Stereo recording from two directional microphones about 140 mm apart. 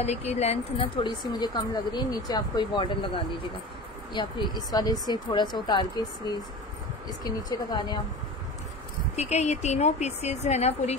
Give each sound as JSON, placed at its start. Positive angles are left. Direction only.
{"t": 0.0, "sound": "a woman's voice", "side_deg": 50}
{"t": 9.1, "sound": "a woman's voice", "side_deg": 50}